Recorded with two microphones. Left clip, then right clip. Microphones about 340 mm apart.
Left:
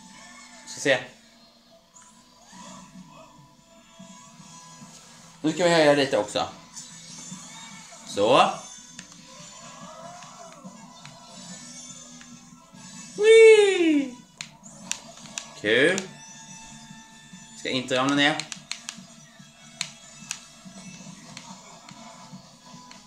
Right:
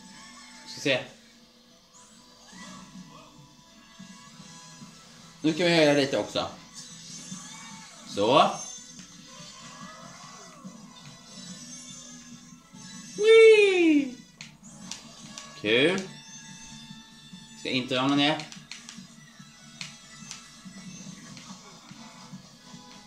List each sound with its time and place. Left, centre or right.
5.4 s speech: left
8.1 s speech: left
13.2 s a sound: left
14.4 s music: left
17.6 s speech: left